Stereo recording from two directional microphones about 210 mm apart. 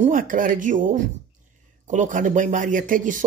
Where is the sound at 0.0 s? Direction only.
40° right (ahead or behind).